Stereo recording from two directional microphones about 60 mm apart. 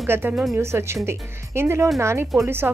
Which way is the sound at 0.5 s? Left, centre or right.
Right.